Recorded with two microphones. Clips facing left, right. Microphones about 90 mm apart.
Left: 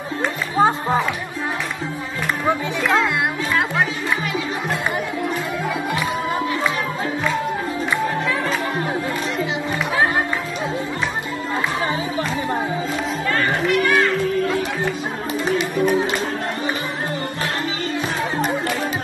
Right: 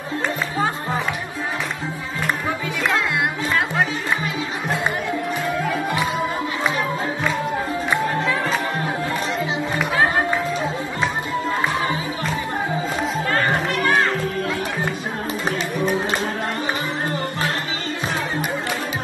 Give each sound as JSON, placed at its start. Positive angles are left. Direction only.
{"t": 0.6, "sound": "music", "side_deg": 25}
{"t": 13.3, "sound": "music", "side_deg": -35}